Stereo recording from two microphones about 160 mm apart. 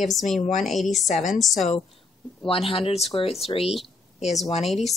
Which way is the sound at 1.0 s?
50° left (ahead or behind).